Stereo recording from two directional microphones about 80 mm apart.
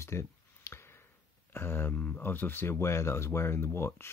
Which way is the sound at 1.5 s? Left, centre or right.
Left.